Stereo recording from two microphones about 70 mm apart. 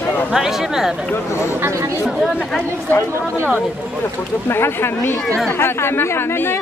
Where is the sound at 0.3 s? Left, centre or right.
Centre.